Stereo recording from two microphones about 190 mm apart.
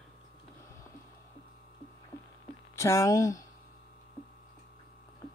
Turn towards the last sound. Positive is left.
turn(degrees=15)  # may be behind; listen again after turning